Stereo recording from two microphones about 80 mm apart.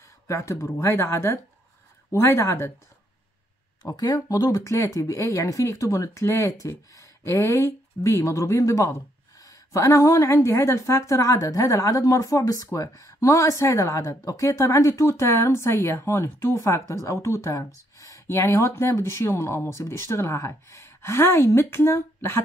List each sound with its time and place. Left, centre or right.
0.3 s speech: left
3.8 s speech: left